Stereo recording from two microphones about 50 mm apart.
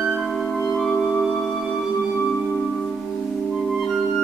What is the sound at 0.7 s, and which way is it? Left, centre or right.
Music, centre.